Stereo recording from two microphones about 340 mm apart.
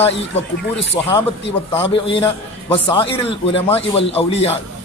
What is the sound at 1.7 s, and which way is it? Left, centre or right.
A man's voice, centre.